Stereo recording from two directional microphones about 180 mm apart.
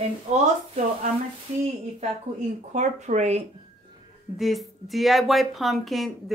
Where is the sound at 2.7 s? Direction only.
40° right (ahead or behind).